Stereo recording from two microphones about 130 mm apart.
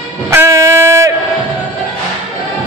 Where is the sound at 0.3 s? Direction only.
20° right (ahead or behind).